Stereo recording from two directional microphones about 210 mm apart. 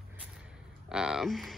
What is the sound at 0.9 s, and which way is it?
Speech, 5° right (ahead or behind).